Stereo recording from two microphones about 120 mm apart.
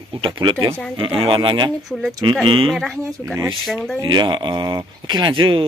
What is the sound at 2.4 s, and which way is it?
Speech, 45° right (ahead or behind).